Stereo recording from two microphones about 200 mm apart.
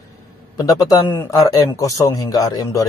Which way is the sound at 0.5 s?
20° left (ahead or behind).